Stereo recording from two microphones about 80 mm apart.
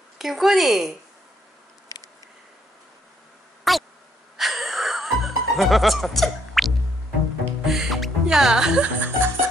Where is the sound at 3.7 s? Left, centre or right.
Centre.